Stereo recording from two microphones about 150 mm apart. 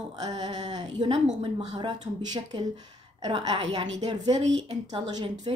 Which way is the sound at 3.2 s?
30° right (ahead or behind).